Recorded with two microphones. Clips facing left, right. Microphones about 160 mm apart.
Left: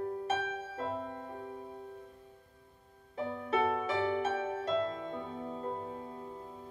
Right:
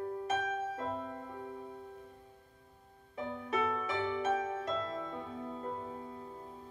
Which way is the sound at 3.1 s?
30° left (ahead or behind).